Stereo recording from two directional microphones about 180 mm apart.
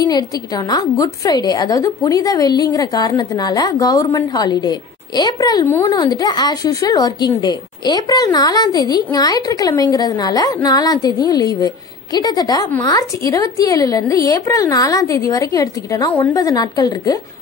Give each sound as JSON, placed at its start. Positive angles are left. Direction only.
{"t": 0.0, "sound": "a woman's voice", "side_deg": 20}